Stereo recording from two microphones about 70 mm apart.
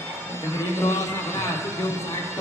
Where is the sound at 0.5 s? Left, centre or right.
Left.